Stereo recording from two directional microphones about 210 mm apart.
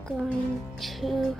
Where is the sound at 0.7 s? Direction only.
Centre (ahead or behind).